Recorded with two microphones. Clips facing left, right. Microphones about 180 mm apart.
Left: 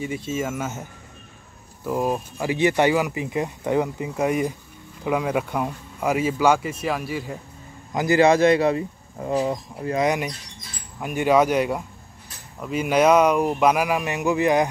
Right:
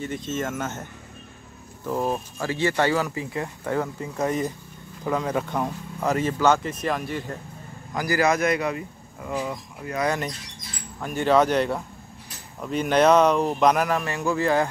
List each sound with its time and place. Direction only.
0.0 s speech: 10° left (ahead or behind)
1.9 s speech: 10° left (ahead or behind)
7.9 s speech: 25° left (ahead or behind)
10.0 s speech: 15° left (ahead or behind)